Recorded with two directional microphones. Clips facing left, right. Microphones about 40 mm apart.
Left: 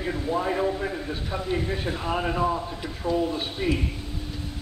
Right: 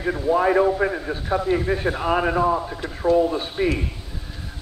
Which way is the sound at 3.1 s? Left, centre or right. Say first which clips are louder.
Right 7 dB; right.